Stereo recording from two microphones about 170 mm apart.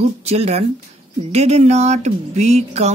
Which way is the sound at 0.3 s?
35° right (ahead or behind).